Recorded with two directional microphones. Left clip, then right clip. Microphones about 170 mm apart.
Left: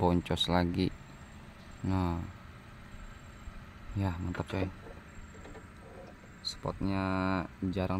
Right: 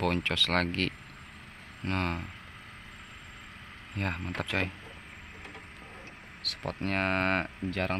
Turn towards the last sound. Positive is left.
turn(degrees=20)  # may be behind; listen again after turning